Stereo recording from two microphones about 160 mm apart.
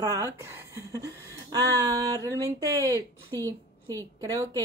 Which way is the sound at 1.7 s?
25° right (ahead or behind).